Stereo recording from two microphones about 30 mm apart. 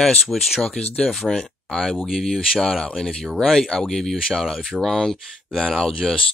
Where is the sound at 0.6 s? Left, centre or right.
Centre.